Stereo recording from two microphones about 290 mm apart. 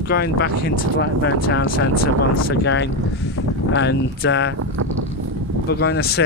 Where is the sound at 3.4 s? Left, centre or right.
Left.